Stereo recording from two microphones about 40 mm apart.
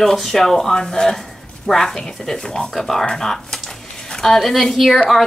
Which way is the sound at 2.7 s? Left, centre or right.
Centre.